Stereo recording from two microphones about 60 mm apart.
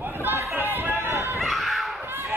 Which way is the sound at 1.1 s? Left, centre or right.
Right.